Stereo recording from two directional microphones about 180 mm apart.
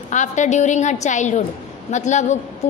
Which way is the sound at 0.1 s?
40° left (ahead or behind).